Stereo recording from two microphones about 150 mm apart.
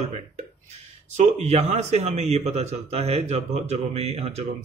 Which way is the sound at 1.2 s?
50° right (ahead or behind).